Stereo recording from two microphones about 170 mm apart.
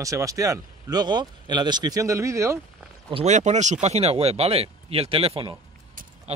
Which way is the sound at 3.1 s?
40° right (ahead or behind).